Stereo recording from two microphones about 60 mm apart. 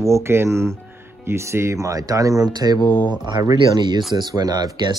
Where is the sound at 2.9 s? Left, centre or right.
Left.